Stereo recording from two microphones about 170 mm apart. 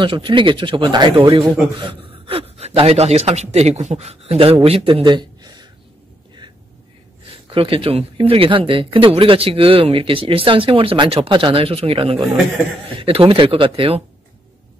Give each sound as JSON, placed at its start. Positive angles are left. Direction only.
{"t": 0.0, "sound": "a man's voice", "side_deg": -30}
{"t": 7.4, "sound": "a man's voice", "side_deg": -30}